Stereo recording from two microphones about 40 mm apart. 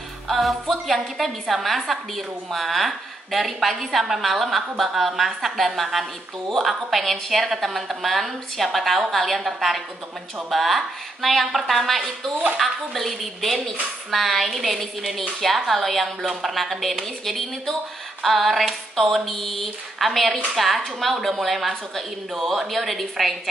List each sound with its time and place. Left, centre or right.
0.3 s a woman's voice: centre
10.5 s a woman's voice: centre